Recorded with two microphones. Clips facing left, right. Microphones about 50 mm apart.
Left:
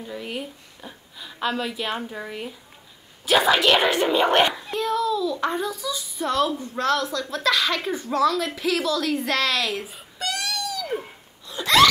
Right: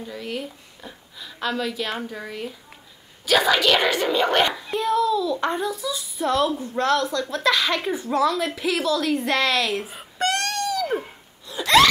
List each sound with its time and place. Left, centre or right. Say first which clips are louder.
0.0 s speech: right 1 dB; centre
4.7 s a child's voice: right 4 dB; centre
9.9 s wail: right 6 dB; right
11.4 s a sound: right 1 dB; centre